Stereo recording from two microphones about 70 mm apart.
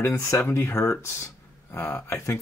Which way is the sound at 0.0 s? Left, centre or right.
Left.